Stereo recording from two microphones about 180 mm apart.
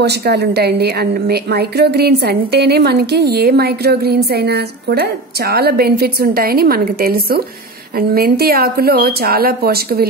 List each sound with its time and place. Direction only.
0.0 s a woman's voice: 65° right (ahead or behind)